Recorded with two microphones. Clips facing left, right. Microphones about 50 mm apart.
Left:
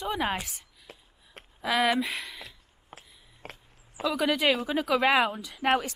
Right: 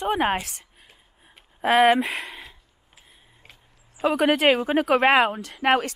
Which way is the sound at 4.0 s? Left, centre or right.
Right.